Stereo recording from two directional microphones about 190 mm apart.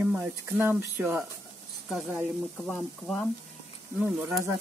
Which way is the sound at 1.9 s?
Centre (ahead or behind).